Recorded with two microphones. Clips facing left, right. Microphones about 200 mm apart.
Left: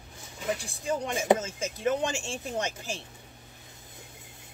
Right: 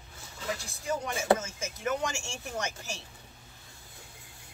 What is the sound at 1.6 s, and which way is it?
Chopping, 35° left (ahead or behind).